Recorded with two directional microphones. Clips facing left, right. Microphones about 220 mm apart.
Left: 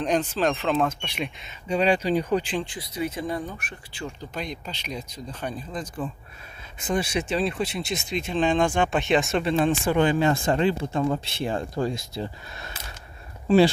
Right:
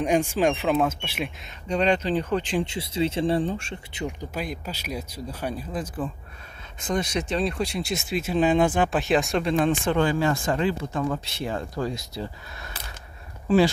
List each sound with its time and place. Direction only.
0.0 s speech: 10° right (ahead or behind)
1.7 s speech: 10° left (ahead or behind)
2.6 s speech: 25° right (ahead or behind)
4.3 s speech: 5° right (ahead or behind)
6.8 s speech: 5° left (ahead or behind)
9.8 s speech: 20° left (ahead or behind)